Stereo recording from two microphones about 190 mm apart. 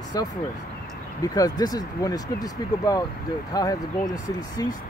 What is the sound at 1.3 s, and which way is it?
Speech, 20° left (ahead or behind).